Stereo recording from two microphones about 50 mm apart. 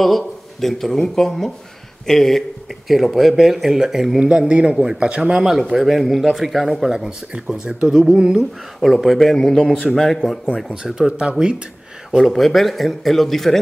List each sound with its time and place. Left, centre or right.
0.0 s a man's voice: centre
5.4 s a man's voice: centre
8.7 s speech: centre
9.4 s speech: centre
10.4 s speech: centre
12.2 s speech: centre